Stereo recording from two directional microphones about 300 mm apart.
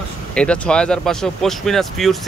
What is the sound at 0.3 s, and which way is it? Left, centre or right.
Speech, centre.